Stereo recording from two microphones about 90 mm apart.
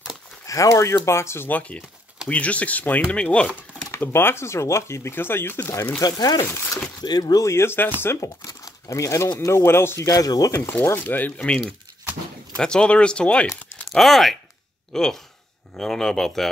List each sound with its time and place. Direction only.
0.5 s speech: 35° left (ahead or behind); by 3.5 s 15° left (ahead or behind)
3.9 s speech: 25° left (ahead or behind)
5.9 s speech: 45° left (ahead or behind)
7.4 s speech: 30° left (ahead or behind)
8.5 s a sound: 40° left (ahead or behind)
9.5 s speech: 30° left (ahead or behind)
10.0 s speech: 45° left (ahead or behind)
10.7 s speech: 20° left (ahead or behind)
13.5 s a sound: centre (ahead or behind)
14.9 s speech: 5° left (ahead or behind)